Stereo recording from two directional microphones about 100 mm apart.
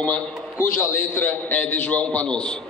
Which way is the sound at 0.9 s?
20° left (ahead or behind).